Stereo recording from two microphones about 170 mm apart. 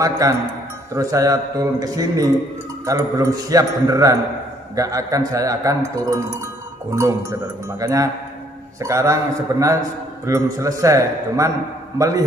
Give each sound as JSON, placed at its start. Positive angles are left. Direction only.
{"t": 0.0, "sound": "a man's voice", "side_deg": -20}